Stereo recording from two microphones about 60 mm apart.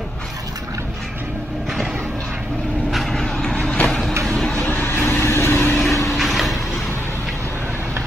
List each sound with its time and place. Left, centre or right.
2.9 s vehicle: centre
3.2 s vehicle: centre
4.6 s vehicle: left
5.8 s vehicle: centre